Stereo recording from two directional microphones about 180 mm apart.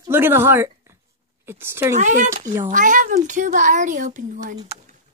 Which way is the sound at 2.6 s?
45° right (ahead or behind).